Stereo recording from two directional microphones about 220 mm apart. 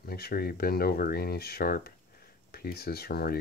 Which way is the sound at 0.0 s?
45° left (ahead or behind).